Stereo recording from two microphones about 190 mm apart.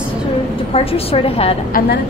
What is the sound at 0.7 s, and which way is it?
Speech, 30° left (ahead or behind).